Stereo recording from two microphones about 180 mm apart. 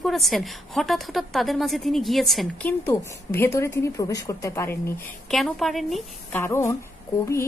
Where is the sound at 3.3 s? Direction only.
15° left (ahead or behind).